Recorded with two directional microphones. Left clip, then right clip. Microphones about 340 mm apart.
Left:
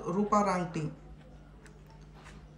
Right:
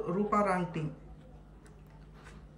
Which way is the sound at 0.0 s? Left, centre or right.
Centre.